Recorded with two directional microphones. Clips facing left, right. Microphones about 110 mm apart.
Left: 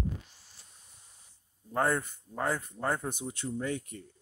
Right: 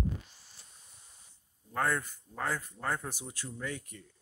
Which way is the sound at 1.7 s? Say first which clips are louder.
Left 3 dB; 25° left (ahead or behind).